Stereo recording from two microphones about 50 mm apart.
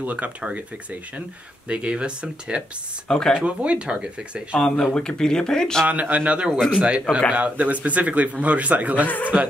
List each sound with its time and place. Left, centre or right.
0.0 s speech: right
3.1 s speech: centre
3.3 s speech: right
4.9 s speech: centre
5.9 s a man's voice: right
7.3 s speech: right
9.0 s speech: left